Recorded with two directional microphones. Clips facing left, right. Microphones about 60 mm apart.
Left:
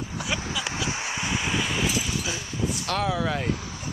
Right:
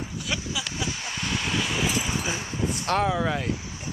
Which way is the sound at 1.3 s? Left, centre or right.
Centre.